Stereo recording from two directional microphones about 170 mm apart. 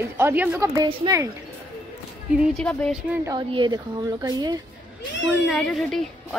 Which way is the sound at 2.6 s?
5° left (ahead or behind).